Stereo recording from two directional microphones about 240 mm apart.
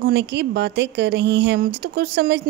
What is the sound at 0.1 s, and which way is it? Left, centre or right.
Speech, right.